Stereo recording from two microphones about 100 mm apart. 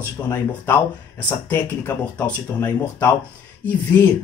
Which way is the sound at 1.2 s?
20° left (ahead or behind).